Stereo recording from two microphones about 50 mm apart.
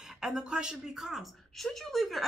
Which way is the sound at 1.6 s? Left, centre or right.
Centre.